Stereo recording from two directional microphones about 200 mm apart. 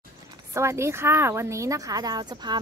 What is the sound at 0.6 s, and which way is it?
A woman's voice, 15° right (ahead or behind).